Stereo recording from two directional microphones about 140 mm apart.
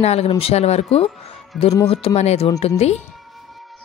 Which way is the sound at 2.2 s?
50° left (ahead or behind).